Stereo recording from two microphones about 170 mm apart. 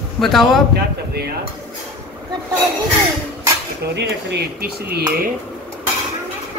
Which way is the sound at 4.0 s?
85° right.